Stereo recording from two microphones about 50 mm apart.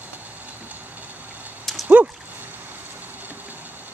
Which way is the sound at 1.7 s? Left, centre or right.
Centre.